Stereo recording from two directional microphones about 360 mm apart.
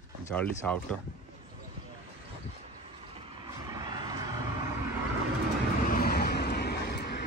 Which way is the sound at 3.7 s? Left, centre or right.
Centre.